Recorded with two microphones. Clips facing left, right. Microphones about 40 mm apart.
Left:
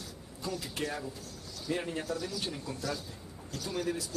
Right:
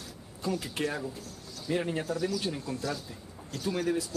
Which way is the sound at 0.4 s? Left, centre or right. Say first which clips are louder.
Right 5 dB; right.